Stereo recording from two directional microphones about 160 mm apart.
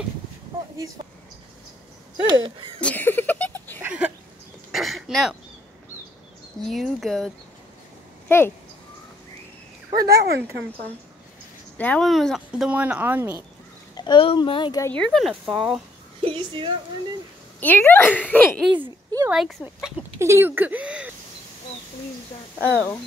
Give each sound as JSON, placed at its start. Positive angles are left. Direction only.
{"t": 2.2, "sound": "a sound", "side_deg": -30}
{"t": 2.8, "sound": "a sound", "side_deg": 10}
{"t": 3.8, "sound": "a sound", "side_deg": -5}
{"t": 4.7, "sound": "throat clearing", "side_deg": 0}
{"t": 6.7, "sound": "speech", "side_deg": 0}
{"t": 8.3, "sound": "a woman's voice", "side_deg": 15}
{"t": 10.0, "sound": "speech", "side_deg": -75}
{"t": 11.8, "sound": "speech", "side_deg": 5}
{"t": 13.9, "sound": "speech", "side_deg": 30}
{"t": 14.9, "sound": "speech", "side_deg": 5}
{"t": 16.3, "sound": "a sound", "side_deg": -35}
{"t": 17.6, "sound": "a woman's voice", "side_deg": 10}
{"t": 19.3, "sound": "speech", "side_deg": -5}
{"t": 22.7, "sound": "a woman's voice", "side_deg": 10}